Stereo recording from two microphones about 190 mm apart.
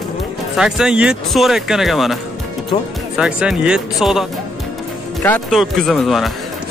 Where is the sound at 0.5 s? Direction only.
5° right (ahead or behind).